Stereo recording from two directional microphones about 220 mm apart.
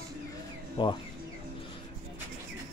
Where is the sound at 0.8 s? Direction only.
20° left (ahead or behind).